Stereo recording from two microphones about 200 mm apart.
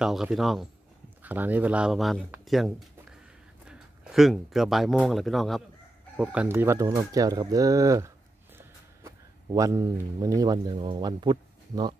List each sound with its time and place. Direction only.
0.0 s speech: centre (ahead or behind)
2.4 s a sound: centre (ahead or behind)
3.6 s speech: 5° right (ahead or behind); by 11.9 s 20° right (ahead or behind)